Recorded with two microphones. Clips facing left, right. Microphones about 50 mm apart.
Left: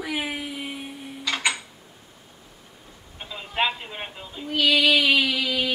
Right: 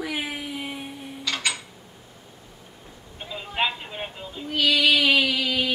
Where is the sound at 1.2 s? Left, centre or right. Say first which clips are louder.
Left 2 dB; centre.